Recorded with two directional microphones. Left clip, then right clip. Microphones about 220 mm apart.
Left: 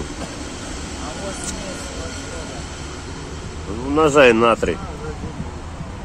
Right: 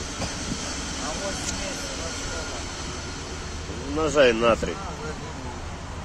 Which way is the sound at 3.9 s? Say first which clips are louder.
Left 7 dB; 35° left (ahead or behind).